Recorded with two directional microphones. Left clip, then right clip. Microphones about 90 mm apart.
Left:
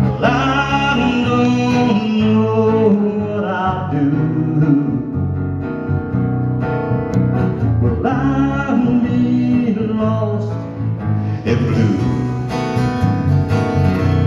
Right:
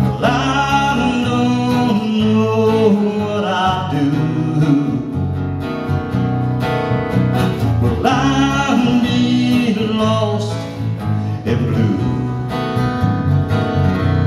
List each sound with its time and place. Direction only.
0.0 s music: 15° right (ahead or behind)
7.2 s music: 25° right (ahead or behind)
13.7 s music: 5° left (ahead or behind)